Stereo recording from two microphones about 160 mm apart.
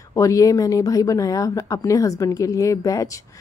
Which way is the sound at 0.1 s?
20° left (ahead or behind).